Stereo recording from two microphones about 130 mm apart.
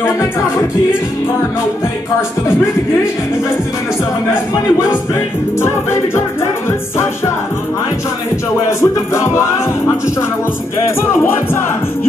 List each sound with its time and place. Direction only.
5.6 s music: 20° left (ahead or behind)
8.6 s music: 20° left (ahead or behind)
11.0 s music: 20° left (ahead or behind)